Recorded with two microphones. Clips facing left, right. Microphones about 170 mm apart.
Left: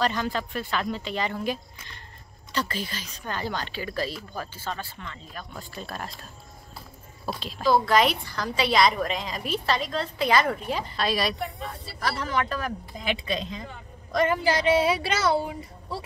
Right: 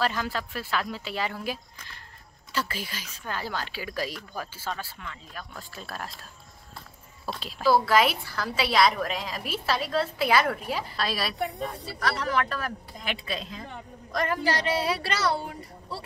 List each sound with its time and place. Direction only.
0.0 s a woman's voice: 5° right (ahead or behind)
7.2 s a woman's voice: 5° right (ahead or behind)